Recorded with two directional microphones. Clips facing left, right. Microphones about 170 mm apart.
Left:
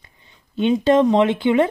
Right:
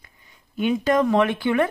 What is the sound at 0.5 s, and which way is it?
Speech, 25° left (ahead or behind).